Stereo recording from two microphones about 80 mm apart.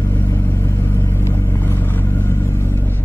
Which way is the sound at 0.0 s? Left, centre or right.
Left.